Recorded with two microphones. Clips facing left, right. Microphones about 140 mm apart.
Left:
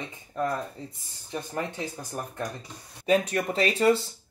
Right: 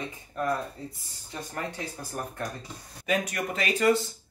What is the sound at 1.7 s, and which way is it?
Speech, 20° left (ahead or behind).